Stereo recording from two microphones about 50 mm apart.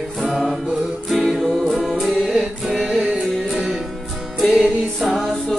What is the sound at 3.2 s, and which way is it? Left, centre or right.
Music, centre.